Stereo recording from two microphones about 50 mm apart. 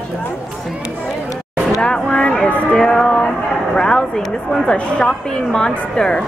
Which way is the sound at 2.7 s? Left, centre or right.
Centre.